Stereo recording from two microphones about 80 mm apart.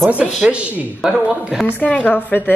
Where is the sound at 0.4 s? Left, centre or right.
Centre.